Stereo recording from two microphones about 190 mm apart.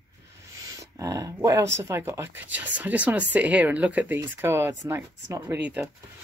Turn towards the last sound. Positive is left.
turn(degrees=-10)  # may be behind; listen again after turning